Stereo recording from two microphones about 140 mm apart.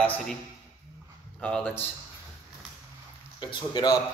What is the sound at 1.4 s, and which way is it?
Speech, 5° left (ahead or behind).